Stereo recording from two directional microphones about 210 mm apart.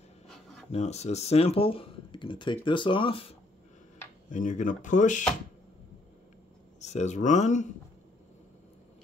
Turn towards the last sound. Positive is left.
turn(degrees=35)  # may be behind; listen again after turning